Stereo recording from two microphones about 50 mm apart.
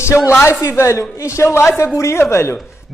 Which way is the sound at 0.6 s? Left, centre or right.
Left.